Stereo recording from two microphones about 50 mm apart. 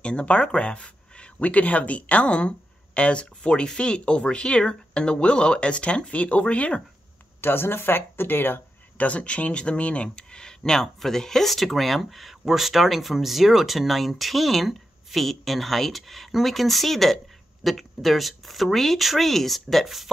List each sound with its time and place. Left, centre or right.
0.0 s speech: left
7.4 s speech: left
8.9 s speech: left; by 20.1 s centre